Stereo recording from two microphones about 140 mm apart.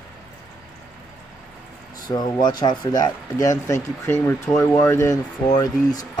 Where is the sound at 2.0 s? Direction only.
30° left (ahead or behind).